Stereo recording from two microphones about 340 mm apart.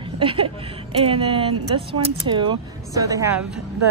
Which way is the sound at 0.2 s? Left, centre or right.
Centre.